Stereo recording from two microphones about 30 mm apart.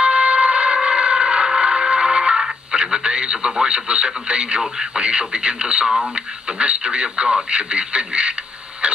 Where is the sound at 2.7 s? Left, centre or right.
Right.